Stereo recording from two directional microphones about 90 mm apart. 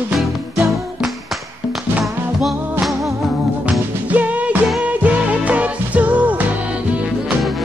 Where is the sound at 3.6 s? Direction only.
15° right (ahead or behind).